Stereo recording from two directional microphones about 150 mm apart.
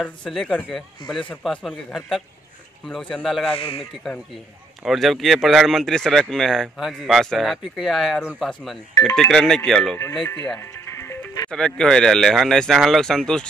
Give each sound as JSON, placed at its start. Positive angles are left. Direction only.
{"t": 0.2, "sound": "speech", "side_deg": 5}
{"t": 3.5, "sound": "speech", "side_deg": 40}
{"t": 4.8, "sound": "speech", "side_deg": 0}
{"t": 10.9, "sound": "music", "side_deg": 20}
{"t": 11.5, "sound": "speech", "side_deg": 5}